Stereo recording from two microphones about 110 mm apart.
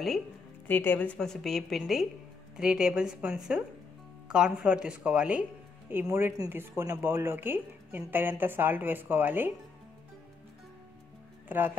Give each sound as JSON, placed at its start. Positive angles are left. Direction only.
{"t": 0.7, "sound": "a woman's voice", "side_deg": 20}
{"t": 6.0, "sound": "a woman's voice", "side_deg": -25}
{"t": 11.4, "sound": "speech", "side_deg": -15}